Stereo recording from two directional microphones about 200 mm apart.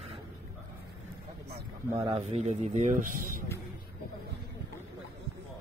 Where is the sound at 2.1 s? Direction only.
30° right (ahead or behind).